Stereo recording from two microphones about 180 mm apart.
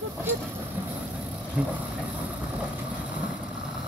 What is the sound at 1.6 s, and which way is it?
Vehicle, 10° right (ahead or behind).